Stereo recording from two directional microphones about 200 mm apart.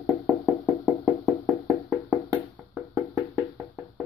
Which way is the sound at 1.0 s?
15° right (ahead or behind).